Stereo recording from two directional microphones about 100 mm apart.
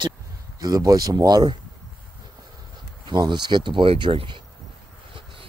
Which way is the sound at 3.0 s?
50° right (ahead or behind).